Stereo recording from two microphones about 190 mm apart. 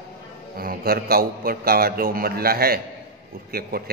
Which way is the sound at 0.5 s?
50° right (ahead or behind).